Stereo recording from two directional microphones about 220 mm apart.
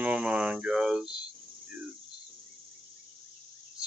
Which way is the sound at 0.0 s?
5° right (ahead or behind).